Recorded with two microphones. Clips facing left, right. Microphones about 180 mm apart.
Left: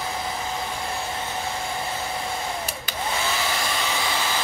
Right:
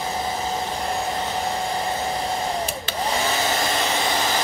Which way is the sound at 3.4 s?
40° right (ahead or behind).